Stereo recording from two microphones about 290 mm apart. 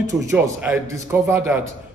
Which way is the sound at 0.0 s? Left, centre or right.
Centre.